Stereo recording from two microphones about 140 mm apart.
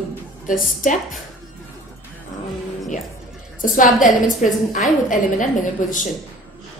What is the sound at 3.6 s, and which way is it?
Speech, 70° left (ahead or behind).